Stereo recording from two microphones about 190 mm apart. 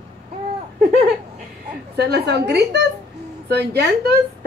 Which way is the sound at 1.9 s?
60° right (ahead or behind).